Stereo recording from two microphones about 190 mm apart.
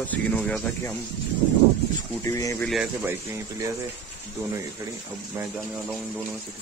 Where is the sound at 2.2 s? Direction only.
15° left (ahead or behind).